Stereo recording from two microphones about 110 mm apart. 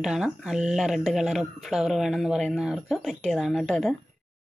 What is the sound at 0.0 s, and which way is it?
Speech, 5° right (ahead or behind).